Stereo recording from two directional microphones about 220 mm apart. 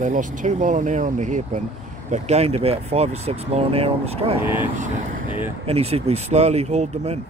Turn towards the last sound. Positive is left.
turn(degrees=-30)  # may be behind; listen again after turning